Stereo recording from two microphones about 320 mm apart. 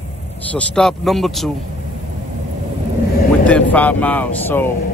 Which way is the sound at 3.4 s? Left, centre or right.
Centre.